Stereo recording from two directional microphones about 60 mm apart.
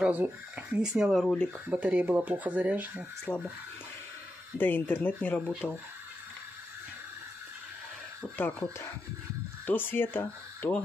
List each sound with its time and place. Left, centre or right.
0.0 s speech: right
3.3 s speech: centre
4.6 s speech: left
5.6 s speech: centre
8.4 s speech: left
9.7 s speech: left